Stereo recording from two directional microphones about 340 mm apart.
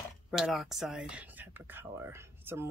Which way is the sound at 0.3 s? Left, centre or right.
Centre.